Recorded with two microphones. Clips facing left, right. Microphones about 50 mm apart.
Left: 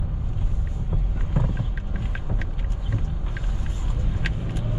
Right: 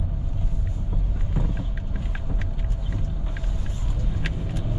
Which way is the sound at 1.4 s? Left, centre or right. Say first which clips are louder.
Left 3 dB; left.